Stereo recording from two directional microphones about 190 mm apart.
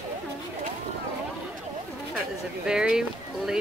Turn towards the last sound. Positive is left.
turn(degrees=-5)  # may be behind; listen again after turning